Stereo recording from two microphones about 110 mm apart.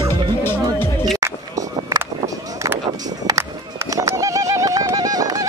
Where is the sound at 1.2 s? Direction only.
30° right (ahead or behind).